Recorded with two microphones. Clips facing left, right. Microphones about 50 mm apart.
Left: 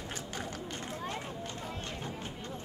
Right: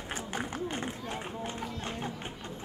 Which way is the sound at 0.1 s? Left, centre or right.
Right.